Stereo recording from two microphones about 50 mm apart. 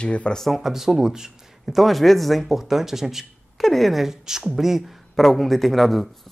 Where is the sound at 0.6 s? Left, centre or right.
Centre.